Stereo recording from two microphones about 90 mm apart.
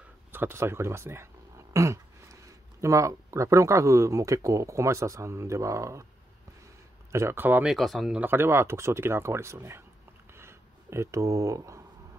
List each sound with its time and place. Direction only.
0.3 s speech: 25° right (ahead or behind)
7.1 s speech: 30° right (ahead or behind)
7.6 s speech: centre (ahead or behind)
8.2 s speech: 25° right (ahead or behind)
10.3 s a sound: 30° right (ahead or behind)